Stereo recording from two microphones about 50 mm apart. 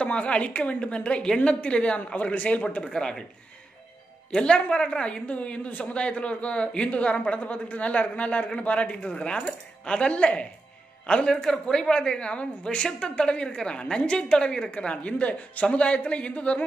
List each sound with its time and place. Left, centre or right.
0.0 s a man's voice: left
2.8 s a woman's voice: centre
4.3 s a man's voice: centre; by 5.9 s left
5.9 s a man's voice: left